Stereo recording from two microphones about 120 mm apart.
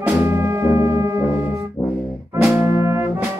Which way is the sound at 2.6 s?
25° right (ahead or behind).